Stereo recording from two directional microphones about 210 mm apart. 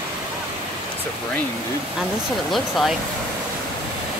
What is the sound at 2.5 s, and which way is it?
Speech, centre (ahead or behind).